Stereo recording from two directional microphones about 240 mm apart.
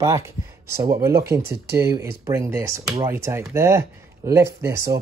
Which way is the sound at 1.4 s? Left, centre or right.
Right.